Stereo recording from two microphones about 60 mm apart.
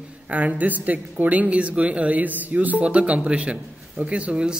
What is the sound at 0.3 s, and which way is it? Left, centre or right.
Speech, right.